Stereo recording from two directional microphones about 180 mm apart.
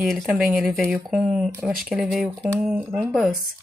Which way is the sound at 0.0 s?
Centre (ahead or behind).